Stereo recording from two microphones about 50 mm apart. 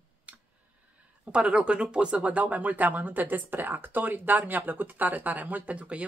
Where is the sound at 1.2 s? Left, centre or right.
Right.